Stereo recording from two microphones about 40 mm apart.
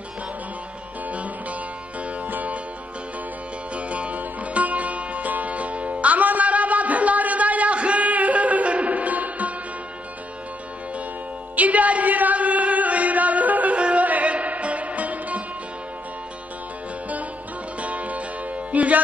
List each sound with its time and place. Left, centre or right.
2.0 s music: right
3.7 s music: right
11.5 s music: right
17.7 s music: right